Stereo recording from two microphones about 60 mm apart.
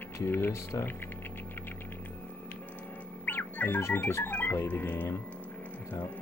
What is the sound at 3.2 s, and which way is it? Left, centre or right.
Music, left.